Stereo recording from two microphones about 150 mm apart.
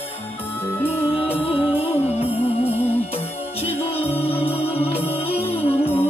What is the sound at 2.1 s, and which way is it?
Music, 40° left (ahead or behind).